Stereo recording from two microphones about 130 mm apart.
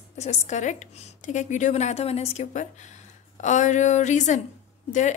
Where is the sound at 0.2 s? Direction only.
60° left (ahead or behind).